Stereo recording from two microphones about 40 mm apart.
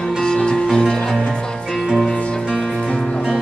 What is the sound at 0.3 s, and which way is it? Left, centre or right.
Music, left.